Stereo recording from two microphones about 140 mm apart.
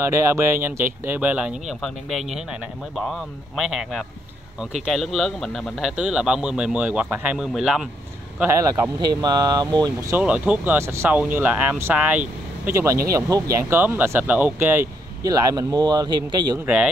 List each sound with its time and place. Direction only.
0.0 s speech: 20° right (ahead or behind)
9.1 s speech: 30° right (ahead or behind)
10.1 s speech: 10° right (ahead or behind)
12.6 s speech: 20° right (ahead or behind)
16.6 s speech: 10° right (ahead or behind)